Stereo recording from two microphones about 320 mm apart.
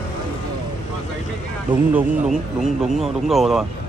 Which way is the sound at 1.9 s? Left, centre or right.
Centre.